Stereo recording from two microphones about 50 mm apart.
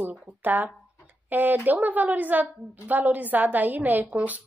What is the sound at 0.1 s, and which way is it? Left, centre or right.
A woman's voice, right.